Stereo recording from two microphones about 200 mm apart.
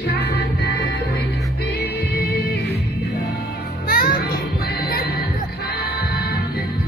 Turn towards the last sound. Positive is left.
turn(degrees=50)  # may be behind; listen again after turning